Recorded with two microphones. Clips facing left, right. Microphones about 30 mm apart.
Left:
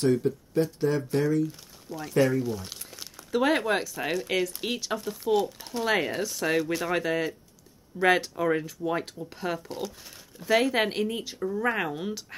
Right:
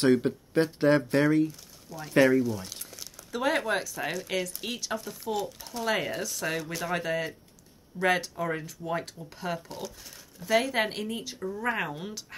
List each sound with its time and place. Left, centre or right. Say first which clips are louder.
0.0 s speech: right 1 dB; right
1.9 s speech: right 2 dB; centre